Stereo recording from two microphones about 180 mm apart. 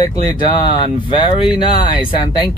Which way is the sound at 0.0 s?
25° left (ahead or behind).